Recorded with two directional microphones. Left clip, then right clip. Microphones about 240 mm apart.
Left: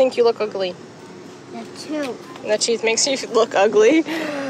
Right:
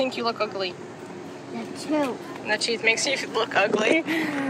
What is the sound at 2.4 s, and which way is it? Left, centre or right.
Speech, centre.